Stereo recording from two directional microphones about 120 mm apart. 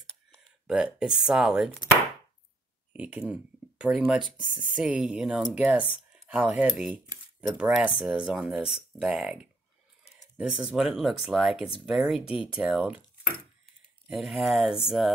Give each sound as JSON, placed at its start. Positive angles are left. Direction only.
{"t": 0.7, "sound": "speech", "side_deg": -5}
{"t": 2.9, "sound": "speech", "side_deg": -10}
{"t": 10.0, "sound": "a sound", "side_deg": 70}
{"t": 10.3, "sound": "speech", "side_deg": -10}
{"t": 14.0, "sound": "speech", "side_deg": -5}